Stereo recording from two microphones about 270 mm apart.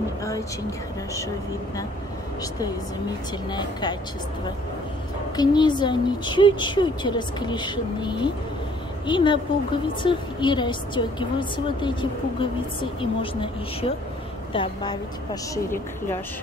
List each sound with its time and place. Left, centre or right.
0.2 s speech: centre
3.4 s a woman's voice: centre
5.3 s a woman's voice: centre